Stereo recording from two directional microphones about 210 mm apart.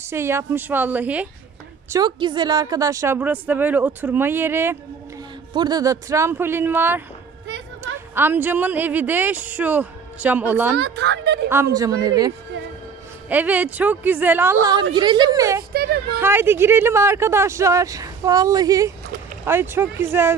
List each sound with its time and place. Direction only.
0.0 s speech: 10° right (ahead or behind)
1.9 s a woman's voice: 20° right (ahead or behind)
10.8 s a woman's voice: 55° right (ahead or behind)
11.4 s a woman's voice: 10° right (ahead or behind)
15.7 s a woman's voice: 45° right (ahead or behind)
16.2 s speech: 10° right (ahead or behind)